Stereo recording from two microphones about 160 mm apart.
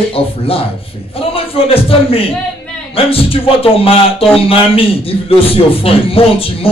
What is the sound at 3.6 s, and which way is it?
A man's voice, 35° left (ahead or behind).